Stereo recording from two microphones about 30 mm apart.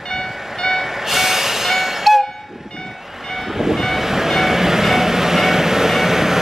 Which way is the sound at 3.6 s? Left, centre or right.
Centre.